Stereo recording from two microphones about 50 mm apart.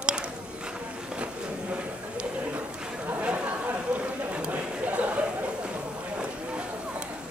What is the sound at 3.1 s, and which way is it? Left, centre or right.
Chatter, right.